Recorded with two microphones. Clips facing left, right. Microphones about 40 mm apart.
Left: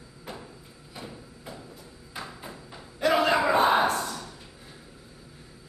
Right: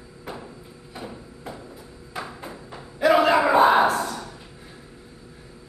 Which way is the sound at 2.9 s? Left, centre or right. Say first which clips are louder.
Right 5 dB; centre.